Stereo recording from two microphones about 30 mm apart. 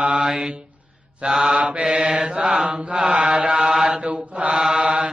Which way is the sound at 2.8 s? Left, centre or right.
Right.